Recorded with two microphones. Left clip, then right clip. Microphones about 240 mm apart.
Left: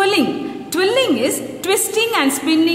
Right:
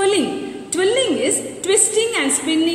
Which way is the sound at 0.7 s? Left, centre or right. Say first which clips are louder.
Left 2 dB; left.